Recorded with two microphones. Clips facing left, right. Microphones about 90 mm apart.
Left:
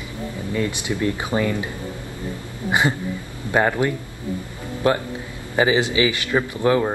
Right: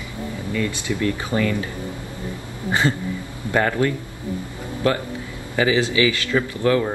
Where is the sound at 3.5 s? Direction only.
20° left (ahead or behind).